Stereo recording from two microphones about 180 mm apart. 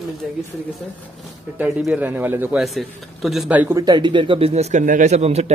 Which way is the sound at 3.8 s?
25° right (ahead or behind).